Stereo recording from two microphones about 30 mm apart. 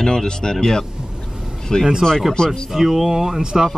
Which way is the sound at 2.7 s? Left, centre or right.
Centre.